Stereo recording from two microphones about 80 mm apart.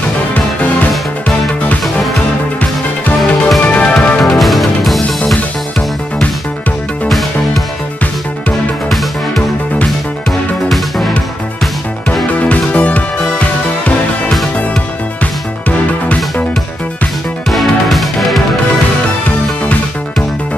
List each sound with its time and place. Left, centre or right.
3.2 s music: centre
3.6 s music: centre
4.2 s music: centre
5.2 s music: centre
11.6 s music: centre
12.4 s music: centre
17.5 s music: centre